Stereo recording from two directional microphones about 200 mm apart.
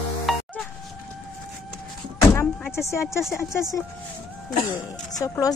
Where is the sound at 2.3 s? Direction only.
10° left (ahead or behind).